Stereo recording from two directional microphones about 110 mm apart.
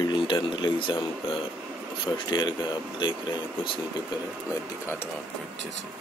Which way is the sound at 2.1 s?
45° left (ahead or behind).